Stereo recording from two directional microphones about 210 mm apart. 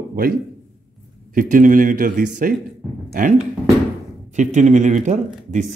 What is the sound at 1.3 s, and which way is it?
Speech, 40° right (ahead or behind).